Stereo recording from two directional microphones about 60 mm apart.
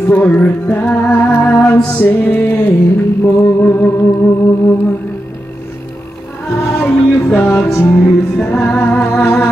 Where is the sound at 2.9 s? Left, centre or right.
Left.